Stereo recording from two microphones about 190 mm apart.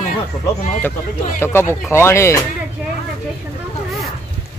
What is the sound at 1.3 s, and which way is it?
Speech, 10° left (ahead or behind).